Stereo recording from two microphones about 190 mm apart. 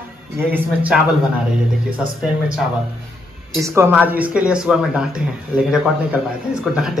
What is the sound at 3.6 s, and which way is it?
Speech, 10° right (ahead or behind).